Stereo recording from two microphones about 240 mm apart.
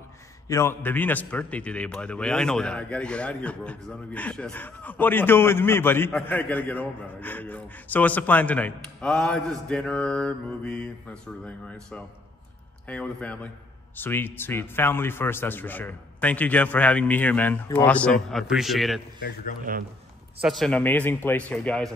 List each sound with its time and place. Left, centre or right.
0.5 s a man's voice: centre
19.7 s speech: right
20.3 s a man's voice: centre